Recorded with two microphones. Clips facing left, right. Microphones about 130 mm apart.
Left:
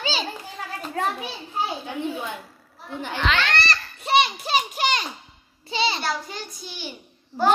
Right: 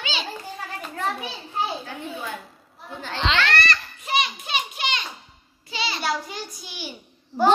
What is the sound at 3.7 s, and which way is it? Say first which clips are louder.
Children playing: left 2 dB; 35° left (ahead or behind).